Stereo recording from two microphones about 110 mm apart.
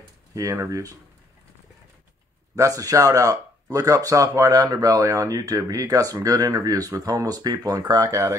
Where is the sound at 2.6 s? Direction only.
30° right (ahead or behind).